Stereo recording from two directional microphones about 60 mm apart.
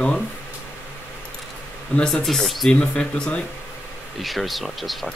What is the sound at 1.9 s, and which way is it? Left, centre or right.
Speech, centre.